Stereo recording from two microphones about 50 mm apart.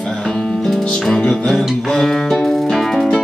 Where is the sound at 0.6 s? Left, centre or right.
Centre.